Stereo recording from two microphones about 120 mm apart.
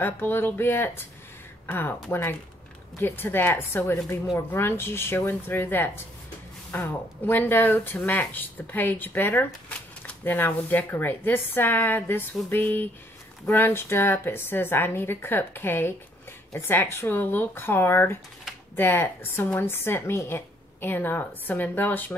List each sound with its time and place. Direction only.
0.0 s speech: 20° left (ahead or behind)